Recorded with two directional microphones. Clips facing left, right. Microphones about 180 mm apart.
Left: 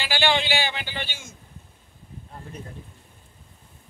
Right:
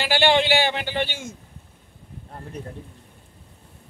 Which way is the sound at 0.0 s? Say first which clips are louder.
Right 5 dB; 60° right (ahead or behind).